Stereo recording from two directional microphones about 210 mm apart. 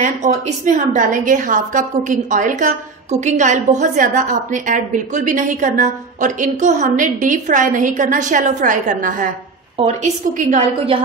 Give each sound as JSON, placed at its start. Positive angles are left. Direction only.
{"t": 0.0, "sound": "a woman's voice", "side_deg": -35}